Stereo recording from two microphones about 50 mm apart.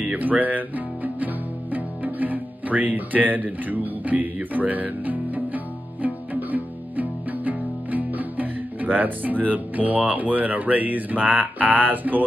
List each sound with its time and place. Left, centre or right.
0.0 s music: right
9.5 s speech: right